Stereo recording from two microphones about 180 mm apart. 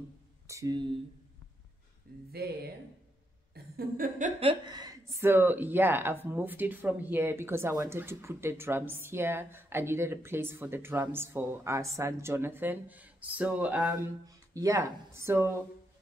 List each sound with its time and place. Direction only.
0.5 s speech: 20° right (ahead or behind)
2.3 s speech: 60° right (ahead or behind)
3.5 s a sound: 55° right (ahead or behind)
4.4 s speech: 25° right (ahead or behind)